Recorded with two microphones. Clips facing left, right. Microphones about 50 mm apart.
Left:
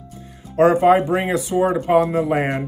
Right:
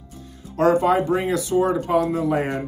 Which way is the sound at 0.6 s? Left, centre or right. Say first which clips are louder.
Left 4 dB; left.